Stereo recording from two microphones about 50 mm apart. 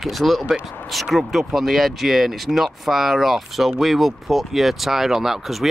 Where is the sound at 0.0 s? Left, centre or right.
Centre.